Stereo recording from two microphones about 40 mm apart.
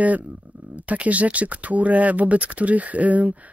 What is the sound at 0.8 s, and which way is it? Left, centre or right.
Speech, right.